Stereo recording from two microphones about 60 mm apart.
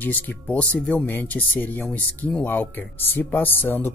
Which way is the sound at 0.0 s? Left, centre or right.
Left.